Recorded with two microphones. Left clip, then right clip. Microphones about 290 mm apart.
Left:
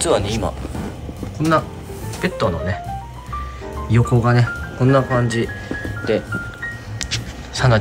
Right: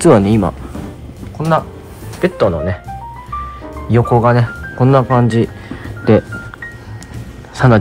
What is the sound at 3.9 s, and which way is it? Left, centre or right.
Speech, centre.